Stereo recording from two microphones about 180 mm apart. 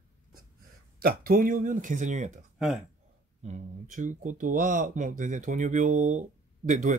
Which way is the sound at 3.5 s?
45° right (ahead or behind).